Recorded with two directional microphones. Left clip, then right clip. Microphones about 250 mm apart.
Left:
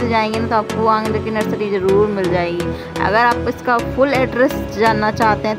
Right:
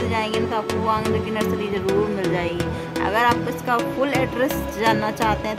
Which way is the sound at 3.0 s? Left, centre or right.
Centre.